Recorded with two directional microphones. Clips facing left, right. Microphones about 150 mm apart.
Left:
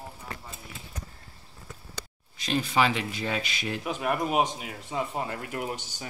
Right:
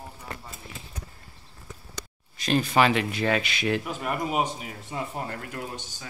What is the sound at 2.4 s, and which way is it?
Speech, 55° right (ahead or behind).